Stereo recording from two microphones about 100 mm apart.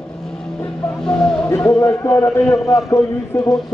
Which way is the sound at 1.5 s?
35° left (ahead or behind).